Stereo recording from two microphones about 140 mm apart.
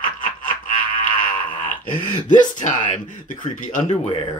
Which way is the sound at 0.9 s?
35° left (ahead or behind).